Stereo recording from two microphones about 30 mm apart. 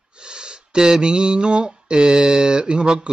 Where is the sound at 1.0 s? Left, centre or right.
Right.